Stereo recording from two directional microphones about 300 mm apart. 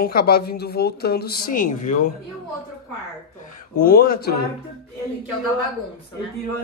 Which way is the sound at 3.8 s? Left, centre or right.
Left.